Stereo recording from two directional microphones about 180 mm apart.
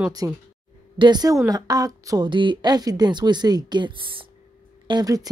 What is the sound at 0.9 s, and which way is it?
A woman's voice, 25° right (ahead or behind).